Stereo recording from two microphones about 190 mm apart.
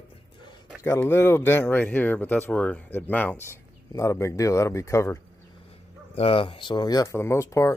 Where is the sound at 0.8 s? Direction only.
10° left (ahead or behind).